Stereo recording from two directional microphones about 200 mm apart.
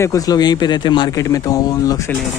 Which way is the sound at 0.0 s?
15° left (ahead or behind).